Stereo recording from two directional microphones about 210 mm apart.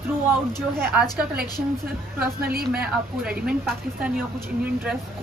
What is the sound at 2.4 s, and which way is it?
Speech, 45° right (ahead or behind).